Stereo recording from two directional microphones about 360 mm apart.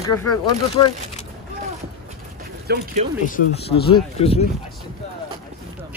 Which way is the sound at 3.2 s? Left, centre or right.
Left.